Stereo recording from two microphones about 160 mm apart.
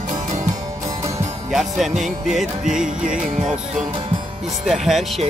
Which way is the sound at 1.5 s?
Centre (ahead or behind).